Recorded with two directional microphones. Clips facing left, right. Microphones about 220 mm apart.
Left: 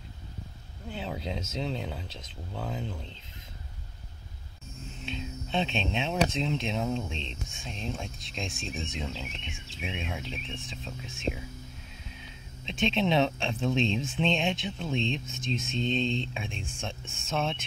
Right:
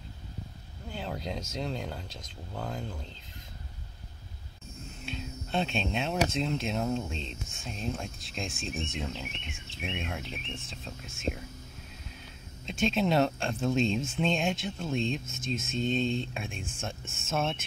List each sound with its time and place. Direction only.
0.8 s speech: 5° left (ahead or behind)
5.0 s speech: 5° right (ahead or behind)
12.6 s speech: centre (ahead or behind)